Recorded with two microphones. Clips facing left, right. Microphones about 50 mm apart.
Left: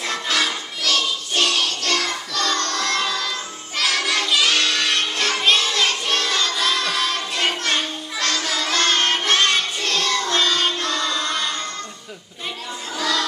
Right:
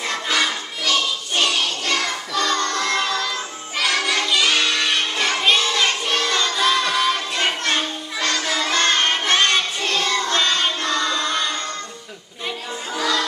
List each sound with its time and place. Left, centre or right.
0.0 s music: centre
12.9 s music: centre